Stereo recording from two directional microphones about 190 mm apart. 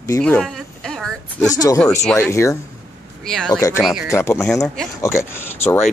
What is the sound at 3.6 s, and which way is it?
Speech, 15° left (ahead or behind).